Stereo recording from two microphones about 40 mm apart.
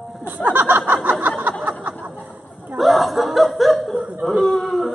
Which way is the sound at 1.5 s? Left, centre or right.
Right.